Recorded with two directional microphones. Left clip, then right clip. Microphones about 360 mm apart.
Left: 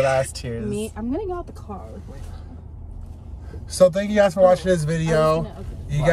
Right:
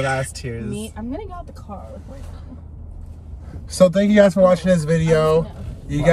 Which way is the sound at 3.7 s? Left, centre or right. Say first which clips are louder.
Right 2 dB; centre.